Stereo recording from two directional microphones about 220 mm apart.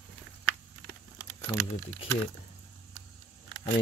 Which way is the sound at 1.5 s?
15° left (ahead or behind).